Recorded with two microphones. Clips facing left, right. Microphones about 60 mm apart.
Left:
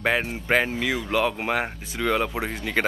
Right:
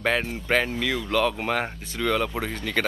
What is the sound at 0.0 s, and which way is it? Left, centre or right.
Speech, centre.